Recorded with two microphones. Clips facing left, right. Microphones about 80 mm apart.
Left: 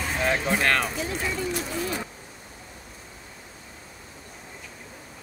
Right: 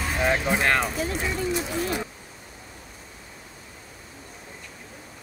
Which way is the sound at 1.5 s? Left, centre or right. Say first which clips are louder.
Right 2 dB; right.